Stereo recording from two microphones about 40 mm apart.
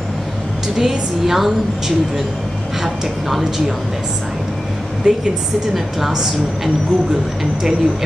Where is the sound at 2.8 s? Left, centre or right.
Centre.